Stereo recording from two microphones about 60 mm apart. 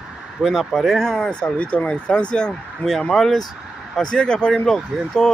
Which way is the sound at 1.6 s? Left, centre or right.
Left.